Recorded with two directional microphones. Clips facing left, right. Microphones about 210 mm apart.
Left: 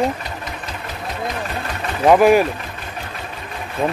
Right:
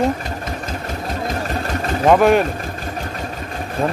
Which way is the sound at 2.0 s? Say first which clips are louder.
Left 1 dB; 5° left (ahead or behind).